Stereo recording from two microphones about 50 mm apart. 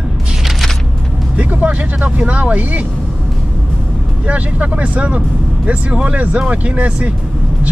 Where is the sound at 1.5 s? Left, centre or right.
Right.